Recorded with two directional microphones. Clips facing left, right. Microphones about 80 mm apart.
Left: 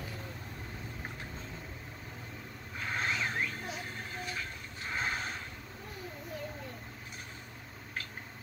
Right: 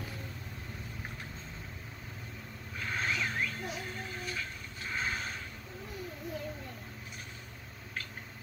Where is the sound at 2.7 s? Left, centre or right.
Left.